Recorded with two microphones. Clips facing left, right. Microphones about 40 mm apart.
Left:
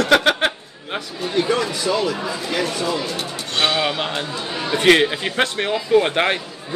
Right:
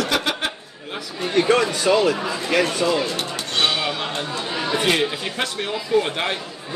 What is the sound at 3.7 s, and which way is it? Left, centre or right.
Speech, left.